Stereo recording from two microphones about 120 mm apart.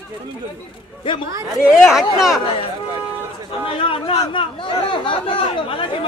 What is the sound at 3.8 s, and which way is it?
Speech, 45° left (ahead or behind).